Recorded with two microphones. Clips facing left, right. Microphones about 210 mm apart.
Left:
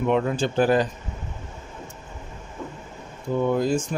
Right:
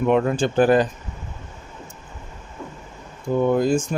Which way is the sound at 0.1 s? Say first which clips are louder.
Right 4 dB; 50° right (ahead or behind).